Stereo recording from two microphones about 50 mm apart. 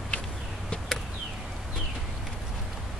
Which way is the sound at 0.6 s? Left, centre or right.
Centre.